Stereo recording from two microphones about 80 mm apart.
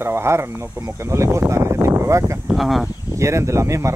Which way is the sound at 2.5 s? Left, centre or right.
Centre.